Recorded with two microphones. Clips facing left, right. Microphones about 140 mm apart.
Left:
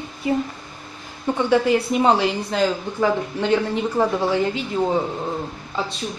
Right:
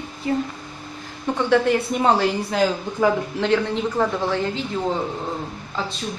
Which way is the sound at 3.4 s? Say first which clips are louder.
Left 2 dB; 5° left (ahead or behind).